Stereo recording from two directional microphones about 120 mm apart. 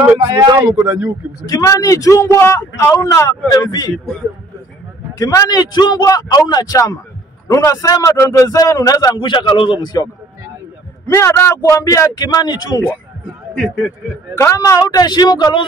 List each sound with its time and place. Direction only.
0.3 s speech: 35° right (ahead or behind)
0.6 s speech: 25° right (ahead or behind)
1.4 s a man's voice: 30° left (ahead or behind)
5.2 s a man's voice: 30° left (ahead or behind)
11.1 s a man's voice: 20° left (ahead or behind)
14.3 s a man's voice: 25° left (ahead or behind)